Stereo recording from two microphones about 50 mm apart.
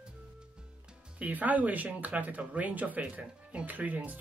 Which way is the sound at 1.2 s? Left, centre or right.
Right.